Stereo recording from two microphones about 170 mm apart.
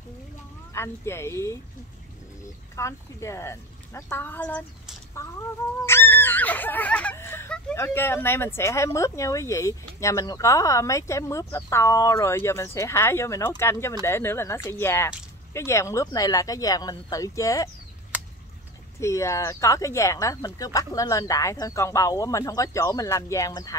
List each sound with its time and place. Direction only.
0.7 s speech: 15° left (ahead or behind)
2.7 s speech: 15° left (ahead or behind)
5.1 s a sound: 15° left (ahead or behind)
7.7 s speech: 15° left (ahead or behind)
18.9 s speech: 15° left (ahead or behind)